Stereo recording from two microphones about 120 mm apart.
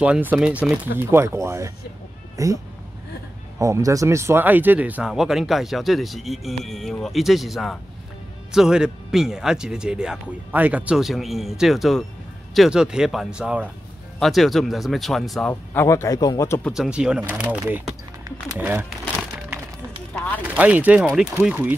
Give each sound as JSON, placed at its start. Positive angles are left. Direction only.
{"t": 0.0, "sound": "speech", "side_deg": -10}
{"t": 15.7, "sound": "a man's voice", "side_deg": 20}
{"t": 16.7, "sound": "speech", "side_deg": -5}
{"t": 18.6, "sound": "speech", "side_deg": -15}
{"t": 20.5, "sound": "speech", "side_deg": -10}